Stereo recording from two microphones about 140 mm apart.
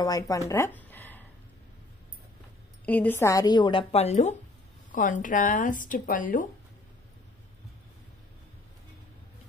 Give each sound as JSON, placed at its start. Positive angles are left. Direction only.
{"t": 0.0, "sound": "a woman's voice", "side_deg": 25}
{"t": 0.5, "sound": "a sound", "side_deg": 15}
{"t": 2.8, "sound": "a woman's voice", "side_deg": 10}
{"t": 3.9, "sound": "speech", "side_deg": 50}
{"t": 4.9, "sound": "speech", "side_deg": 70}